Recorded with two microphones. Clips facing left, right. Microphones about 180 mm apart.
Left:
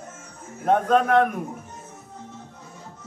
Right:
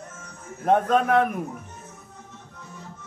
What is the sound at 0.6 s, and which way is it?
Speech, centre (ahead or behind).